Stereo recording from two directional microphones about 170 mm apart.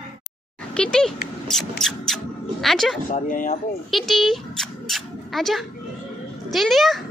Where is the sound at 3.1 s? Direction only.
50° left (ahead or behind).